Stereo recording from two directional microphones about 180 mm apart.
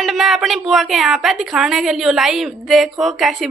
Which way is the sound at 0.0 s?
Centre (ahead or behind).